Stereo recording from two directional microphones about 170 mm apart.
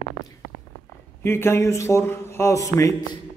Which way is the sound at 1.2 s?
15° left (ahead or behind).